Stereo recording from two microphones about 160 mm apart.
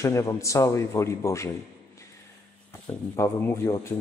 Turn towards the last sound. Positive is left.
turn(degrees=15)  # may be behind; listen again after turning